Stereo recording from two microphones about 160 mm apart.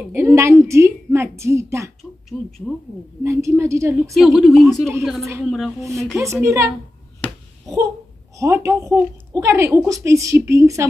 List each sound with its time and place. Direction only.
0.1 s a woman's voice: 15° right (ahead or behind)
2.3 s speech: 5° right (ahead or behind)
3.3 s a woman's voice: 20° right (ahead or behind)
4.1 s speech: centre (ahead or behind)
6.1 s a woman's voice: 15° right (ahead or behind)
8.4 s a woman's voice: 20° right (ahead or behind)